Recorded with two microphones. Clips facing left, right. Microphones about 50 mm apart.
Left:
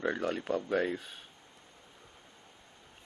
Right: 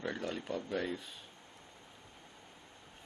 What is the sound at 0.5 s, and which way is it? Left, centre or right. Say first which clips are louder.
Speech: left 6 dB; left.